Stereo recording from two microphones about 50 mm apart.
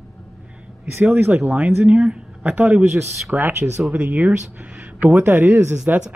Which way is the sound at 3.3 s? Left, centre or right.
Right.